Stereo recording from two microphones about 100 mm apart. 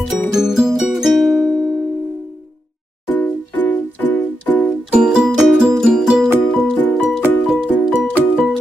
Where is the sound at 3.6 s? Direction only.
20° left (ahead or behind).